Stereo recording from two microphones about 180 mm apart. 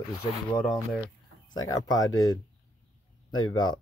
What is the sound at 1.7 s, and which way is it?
Speech, 20° left (ahead or behind).